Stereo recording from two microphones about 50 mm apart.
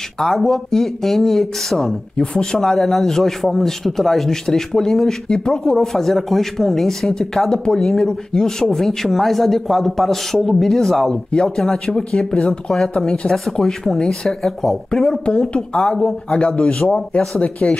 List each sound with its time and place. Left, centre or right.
0.2 s a man's voice: centre; by 17.2 s left
17.2 s a man's voice: centre